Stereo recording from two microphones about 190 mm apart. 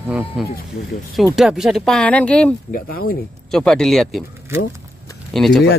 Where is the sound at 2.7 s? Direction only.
50° left (ahead or behind).